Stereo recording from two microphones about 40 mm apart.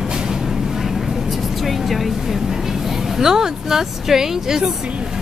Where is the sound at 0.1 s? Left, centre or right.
Centre.